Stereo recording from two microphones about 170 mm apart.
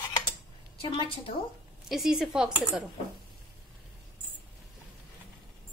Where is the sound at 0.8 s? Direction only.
30° left (ahead or behind).